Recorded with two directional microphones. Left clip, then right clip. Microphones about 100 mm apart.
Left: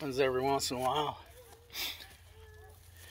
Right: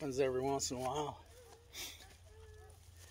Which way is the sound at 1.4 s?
10° right (ahead or behind).